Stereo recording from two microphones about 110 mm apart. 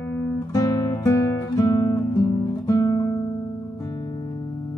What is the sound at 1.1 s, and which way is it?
Guitar, 20° left (ahead or behind).